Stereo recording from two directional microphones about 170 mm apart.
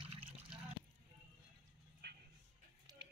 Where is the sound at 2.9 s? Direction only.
25° right (ahead or behind).